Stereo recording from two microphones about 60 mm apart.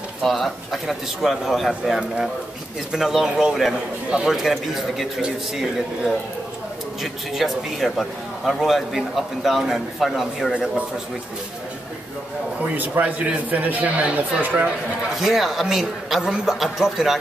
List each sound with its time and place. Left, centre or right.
0.2 s a man's voice: centre
7.0 s a man's voice: centre
12.7 s a man's voice: right
15.1 s a man's voice: centre